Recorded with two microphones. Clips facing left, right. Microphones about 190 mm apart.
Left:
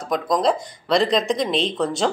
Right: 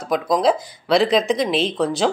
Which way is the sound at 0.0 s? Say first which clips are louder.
Right 2 dB; 5° right (ahead or behind).